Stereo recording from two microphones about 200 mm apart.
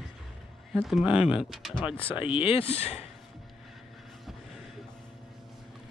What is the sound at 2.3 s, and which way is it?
Speech, 25° left (ahead or behind).